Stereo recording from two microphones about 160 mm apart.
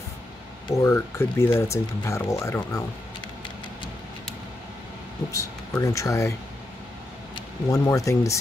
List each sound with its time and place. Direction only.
0.7 s speech: 20° left (ahead or behind)
5.3 s speech: 20° left (ahead or behind)
7.3 s speech: 20° left (ahead or behind)